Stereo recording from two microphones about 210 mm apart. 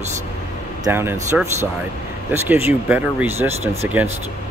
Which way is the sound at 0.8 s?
10° right (ahead or behind).